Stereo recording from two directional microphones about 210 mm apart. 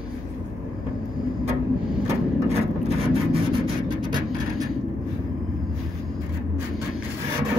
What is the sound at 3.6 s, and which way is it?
Vehicle, 20° right (ahead or behind).